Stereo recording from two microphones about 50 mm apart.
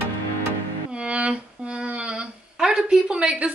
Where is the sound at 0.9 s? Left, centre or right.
Right.